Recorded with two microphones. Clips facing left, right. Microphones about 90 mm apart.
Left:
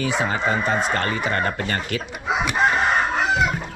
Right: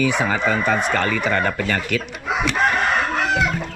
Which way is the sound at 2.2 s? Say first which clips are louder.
Even; 10° left (ahead or behind).